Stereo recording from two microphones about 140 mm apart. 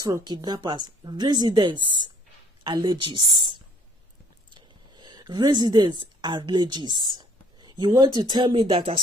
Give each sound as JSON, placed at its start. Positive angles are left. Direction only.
{"t": 0.0, "sound": "a woman's voice", "side_deg": -30}